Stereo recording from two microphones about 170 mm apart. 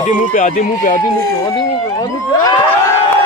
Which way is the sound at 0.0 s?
50° left (ahead or behind).